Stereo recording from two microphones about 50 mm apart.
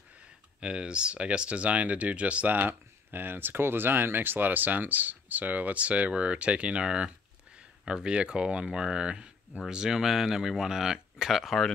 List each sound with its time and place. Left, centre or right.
0.6 s speech: centre
2.5 s speech: right; by 11.7 s centre